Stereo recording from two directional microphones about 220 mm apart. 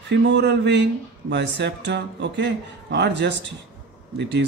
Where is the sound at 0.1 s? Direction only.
50° right (ahead or behind).